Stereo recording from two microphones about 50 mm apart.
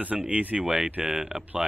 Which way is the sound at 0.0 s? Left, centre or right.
Right.